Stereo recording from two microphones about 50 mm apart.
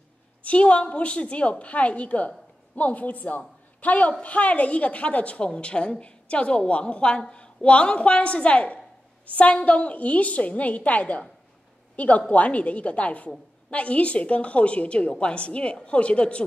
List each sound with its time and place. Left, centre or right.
0.4 s a woman's voice: left
12.3 s a woman's voice: left